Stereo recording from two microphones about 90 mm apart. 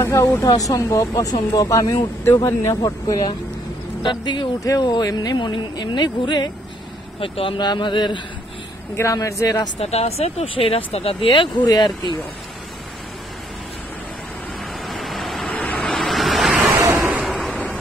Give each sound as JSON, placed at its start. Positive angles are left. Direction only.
{"t": 0.0, "sound": "speech", "side_deg": 30}
{"t": 4.0, "sound": "speech", "side_deg": 60}
{"t": 4.6, "sound": "speech", "side_deg": 45}
{"t": 7.2, "sound": "speech", "side_deg": 75}
{"t": 8.9, "sound": "speech", "side_deg": 35}
{"t": 10.4, "sound": "speech", "side_deg": 90}
{"t": 11.6, "sound": "speech", "side_deg": 50}
{"t": 14.9, "sound": "vehicle", "side_deg": 0}
{"t": 15.5, "sound": "vehicle", "side_deg": 15}
{"t": 15.8, "sound": "vehicle", "side_deg": 5}
{"t": 16.9, "sound": "a sound", "side_deg": -20}
{"t": 17.3, "sound": "a sound", "side_deg": -5}